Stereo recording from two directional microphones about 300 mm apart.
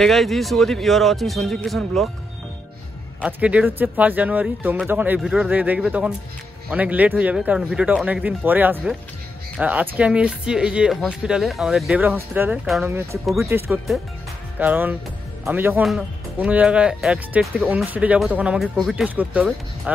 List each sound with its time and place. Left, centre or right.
0.0 s speech: centre
3.2 s speech: centre